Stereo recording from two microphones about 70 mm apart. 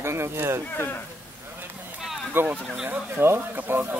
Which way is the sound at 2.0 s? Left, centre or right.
Centre.